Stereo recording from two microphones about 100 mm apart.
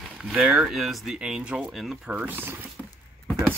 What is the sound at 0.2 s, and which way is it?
Speech, 10° right (ahead or behind).